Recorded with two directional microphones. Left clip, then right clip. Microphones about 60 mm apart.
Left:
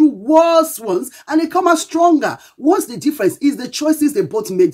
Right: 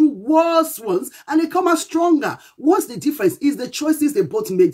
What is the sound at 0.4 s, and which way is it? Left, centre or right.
Speech, left.